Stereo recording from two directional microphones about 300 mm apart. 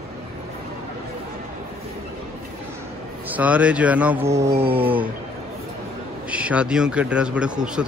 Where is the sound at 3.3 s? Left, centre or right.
Centre.